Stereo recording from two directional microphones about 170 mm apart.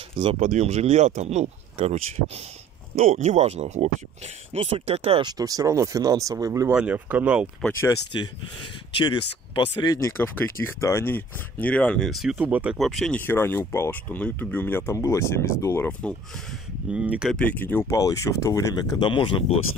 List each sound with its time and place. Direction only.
0.2 s speech: 30° right (ahead or behind)
3.0 s speech: 40° right (ahead or behind)
5.2 s speech: 20° right (ahead or behind)
6.7 s speech: 10° right (ahead or behind)
7.6 s speech: 15° left (ahead or behind)
9.8 s speech: 20° left (ahead or behind); by 13.2 s centre (ahead or behind)
13.2 s speech: 10° left (ahead or behind)
16.9 s speech: 5° right (ahead or behind)
17.4 s speech: 10° left (ahead or behind); by 19.6 s 30° left (ahead or behind)